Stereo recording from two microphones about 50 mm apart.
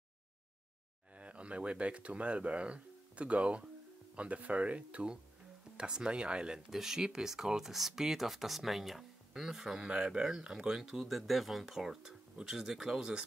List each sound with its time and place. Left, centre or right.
1.1 s speech: right
6.7 s speech: centre